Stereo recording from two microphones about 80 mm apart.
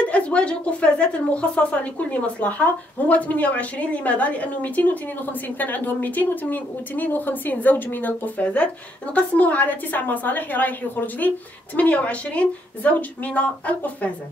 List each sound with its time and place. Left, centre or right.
0.1 s a woman's voice: centre